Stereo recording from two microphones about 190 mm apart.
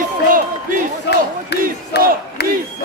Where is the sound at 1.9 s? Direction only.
60° left (ahead or behind).